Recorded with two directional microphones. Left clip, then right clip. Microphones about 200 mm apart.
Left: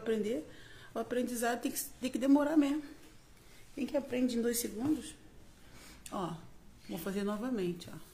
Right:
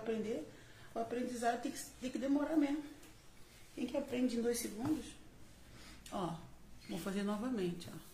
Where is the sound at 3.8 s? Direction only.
45° left (ahead or behind).